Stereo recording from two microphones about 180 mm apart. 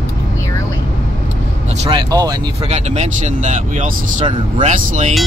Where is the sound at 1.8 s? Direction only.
25° right (ahead or behind).